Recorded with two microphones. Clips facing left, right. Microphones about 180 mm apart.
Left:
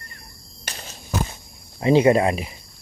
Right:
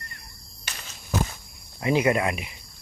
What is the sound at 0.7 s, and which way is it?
Walk, 35° left (ahead or behind).